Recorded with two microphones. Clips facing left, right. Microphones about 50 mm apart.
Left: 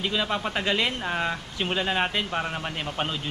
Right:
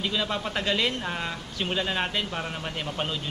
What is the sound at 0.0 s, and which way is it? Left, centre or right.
Speech, centre.